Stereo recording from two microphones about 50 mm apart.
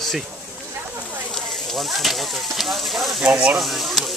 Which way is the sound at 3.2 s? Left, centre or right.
Centre.